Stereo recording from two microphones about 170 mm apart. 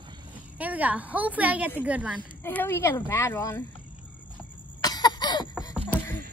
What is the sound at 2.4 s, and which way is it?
Speech, 10° left (ahead or behind).